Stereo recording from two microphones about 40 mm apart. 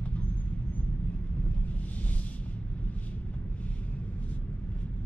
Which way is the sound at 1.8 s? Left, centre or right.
Left.